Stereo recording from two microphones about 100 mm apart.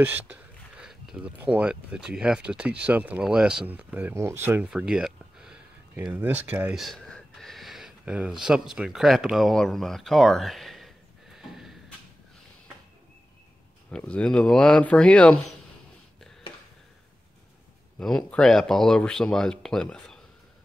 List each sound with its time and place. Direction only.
0.0 s a sound: 15° right (ahead or behind)
1.4 s speech: 15° right (ahead or behind)
4.6 s a sound: 10° right (ahead or behind)
6.1 s speech: 15° right (ahead or behind)
6.7 s speech: centre (ahead or behind)
11.3 s horse: centre (ahead or behind)
13.8 s speech: 10° left (ahead or behind)
17.9 s speech: 10° left (ahead or behind)